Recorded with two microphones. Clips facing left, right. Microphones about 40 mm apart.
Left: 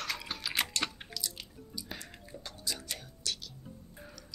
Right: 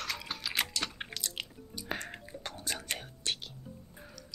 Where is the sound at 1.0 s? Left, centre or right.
Right.